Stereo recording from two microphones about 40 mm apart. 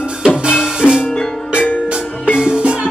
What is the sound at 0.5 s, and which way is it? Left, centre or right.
Music, centre.